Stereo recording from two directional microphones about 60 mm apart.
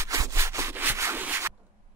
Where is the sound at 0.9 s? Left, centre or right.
Right.